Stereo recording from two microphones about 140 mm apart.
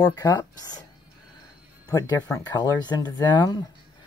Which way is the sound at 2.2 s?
10° left (ahead or behind).